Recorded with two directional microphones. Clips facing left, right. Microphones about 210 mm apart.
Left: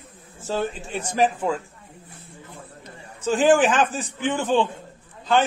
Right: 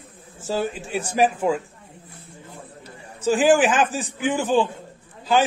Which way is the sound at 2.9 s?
10° right (ahead or behind).